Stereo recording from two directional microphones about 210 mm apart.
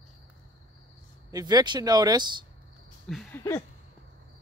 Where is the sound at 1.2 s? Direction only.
15° right (ahead or behind).